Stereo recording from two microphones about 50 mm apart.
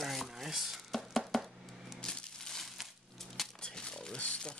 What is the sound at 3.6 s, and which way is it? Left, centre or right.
Crumpling, centre.